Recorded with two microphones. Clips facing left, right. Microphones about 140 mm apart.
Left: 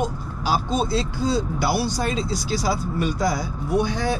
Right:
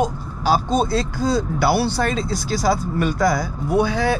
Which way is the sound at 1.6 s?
60° right (ahead or behind).